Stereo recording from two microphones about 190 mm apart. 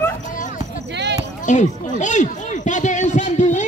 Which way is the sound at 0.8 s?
65° right (ahead or behind).